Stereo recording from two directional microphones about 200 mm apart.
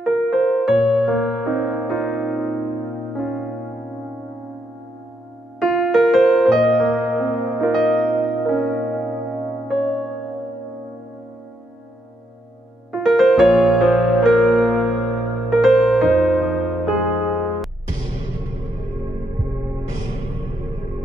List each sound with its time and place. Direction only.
0.0 s music: centre (ahead or behind)
5.6 s music: centre (ahead or behind)
12.9 s music: centre (ahead or behind)